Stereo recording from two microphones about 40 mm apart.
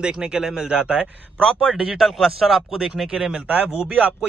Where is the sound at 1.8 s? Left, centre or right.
Centre.